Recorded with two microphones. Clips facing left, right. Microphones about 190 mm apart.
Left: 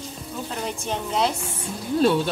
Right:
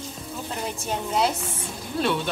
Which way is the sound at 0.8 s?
5° right (ahead or behind).